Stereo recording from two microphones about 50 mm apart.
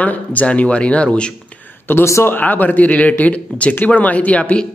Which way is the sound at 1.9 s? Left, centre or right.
Left.